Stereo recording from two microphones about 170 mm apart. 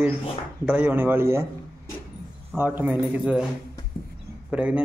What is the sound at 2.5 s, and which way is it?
Speech, 10° right (ahead or behind).